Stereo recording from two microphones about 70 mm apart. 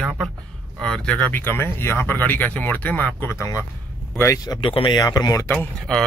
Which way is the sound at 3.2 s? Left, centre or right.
Left.